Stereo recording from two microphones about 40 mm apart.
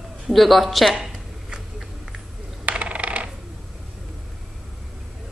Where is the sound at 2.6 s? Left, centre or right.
Right.